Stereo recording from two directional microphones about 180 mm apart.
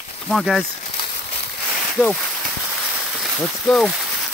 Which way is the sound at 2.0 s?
5° left (ahead or behind).